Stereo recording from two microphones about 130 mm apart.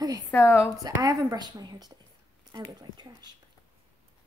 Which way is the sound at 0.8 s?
30° right (ahead or behind).